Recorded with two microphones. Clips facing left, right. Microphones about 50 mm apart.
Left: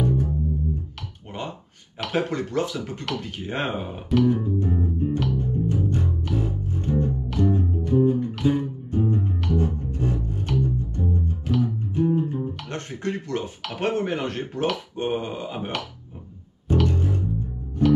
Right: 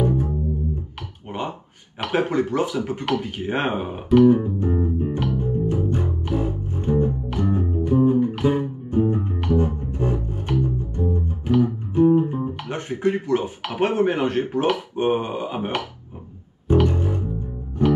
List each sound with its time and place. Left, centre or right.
0.0 s music: centre
2.0 s speech: centre
4.6 s music: right
12.6 s speech: centre
16.6 s music: right